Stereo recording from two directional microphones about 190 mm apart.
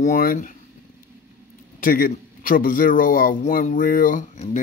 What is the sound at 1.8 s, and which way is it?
A man's voice, 50° left (ahead or behind).